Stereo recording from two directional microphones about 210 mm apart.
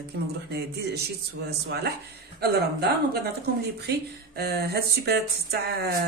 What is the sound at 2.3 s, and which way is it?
Speech, 50° right (ahead or behind).